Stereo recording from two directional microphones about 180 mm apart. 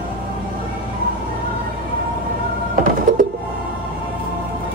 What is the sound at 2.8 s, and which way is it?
Music, 50° right (ahead or behind).